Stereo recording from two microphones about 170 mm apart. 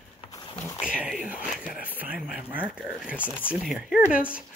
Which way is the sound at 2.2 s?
5° right (ahead or behind).